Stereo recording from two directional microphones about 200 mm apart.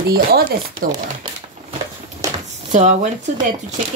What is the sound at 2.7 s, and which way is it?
Speech, 40° right (ahead or behind).